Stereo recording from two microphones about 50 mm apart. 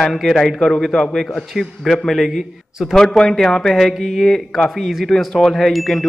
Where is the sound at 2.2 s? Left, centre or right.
Centre.